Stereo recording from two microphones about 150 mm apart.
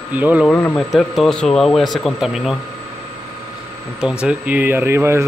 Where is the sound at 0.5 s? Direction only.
10° left (ahead or behind).